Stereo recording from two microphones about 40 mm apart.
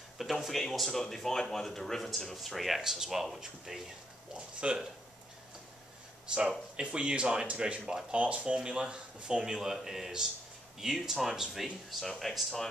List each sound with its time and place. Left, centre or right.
0.2 s speech: centre
2.8 s speech: centre
4.6 s speech: right
6.3 s speech: right
8.1 s speech: right; by 12.6 s centre